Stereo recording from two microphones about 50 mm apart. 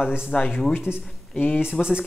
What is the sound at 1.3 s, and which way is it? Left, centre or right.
Speech, left.